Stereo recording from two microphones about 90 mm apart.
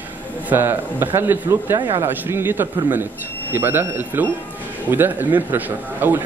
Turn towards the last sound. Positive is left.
turn(degrees=-20)  # may be behind; listen again after turning